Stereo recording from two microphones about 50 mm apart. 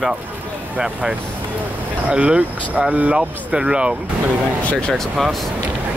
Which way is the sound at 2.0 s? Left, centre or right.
Right.